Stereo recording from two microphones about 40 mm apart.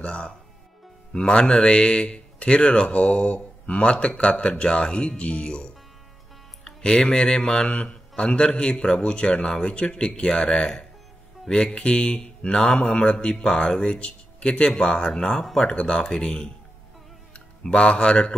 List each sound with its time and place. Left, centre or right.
0.0 s a man's voice: left